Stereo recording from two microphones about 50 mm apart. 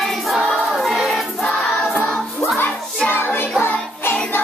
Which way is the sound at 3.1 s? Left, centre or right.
Left.